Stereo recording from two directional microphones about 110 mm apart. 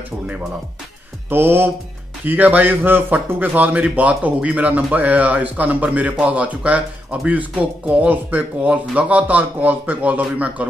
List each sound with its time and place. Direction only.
1.3 s music: 20° right (ahead or behind)
2.2 s a man's voice: 15° right (ahead or behind)